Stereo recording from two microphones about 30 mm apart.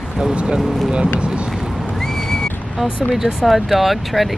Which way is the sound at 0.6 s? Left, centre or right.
Centre.